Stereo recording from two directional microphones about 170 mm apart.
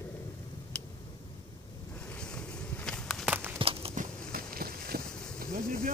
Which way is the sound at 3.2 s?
10° right (ahead or behind).